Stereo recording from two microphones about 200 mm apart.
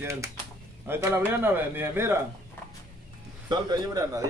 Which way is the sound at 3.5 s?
20° right (ahead or behind).